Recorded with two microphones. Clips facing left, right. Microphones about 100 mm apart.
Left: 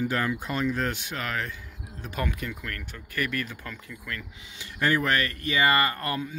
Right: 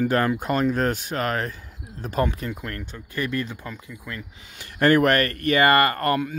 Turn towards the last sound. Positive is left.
turn(degrees=-60)  # may be behind; listen again after turning